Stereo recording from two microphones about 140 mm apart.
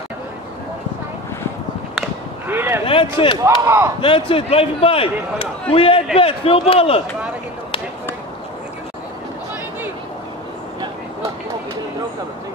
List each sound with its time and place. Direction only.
2.4 s a sound: 15° right (ahead or behind)
2.9 s speech: 40° left (ahead or behind)
3.6 s speech: 15° right (ahead or behind)
4.0 s a man's voice: 40° left (ahead or behind)